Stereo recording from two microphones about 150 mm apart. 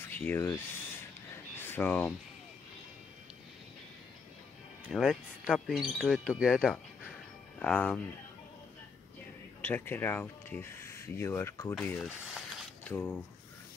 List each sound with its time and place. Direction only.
0.0 s a sound: 10° left (ahead or behind)
1.6 s speech: 15° left (ahead or behind)
4.9 s speech: centre (ahead or behind)
9.6 s speech: 15° left (ahead or behind)
11.8 s speech: centre (ahead or behind)
12.8 s speech: 10° left (ahead or behind)